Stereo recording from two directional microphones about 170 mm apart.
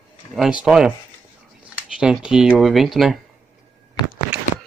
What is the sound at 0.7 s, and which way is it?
Speech, 5° right (ahead or behind).